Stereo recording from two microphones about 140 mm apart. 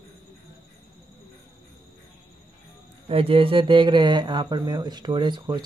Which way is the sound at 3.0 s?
40° right (ahead or behind).